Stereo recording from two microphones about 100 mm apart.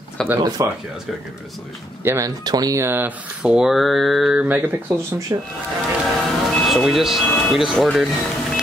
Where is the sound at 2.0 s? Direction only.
25° right (ahead or behind).